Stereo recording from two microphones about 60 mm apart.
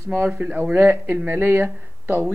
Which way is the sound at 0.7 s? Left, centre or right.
Right.